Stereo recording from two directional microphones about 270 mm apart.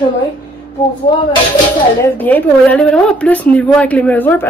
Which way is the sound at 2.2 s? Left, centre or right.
Centre.